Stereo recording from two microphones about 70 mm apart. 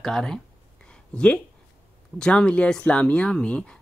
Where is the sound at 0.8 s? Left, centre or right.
Centre.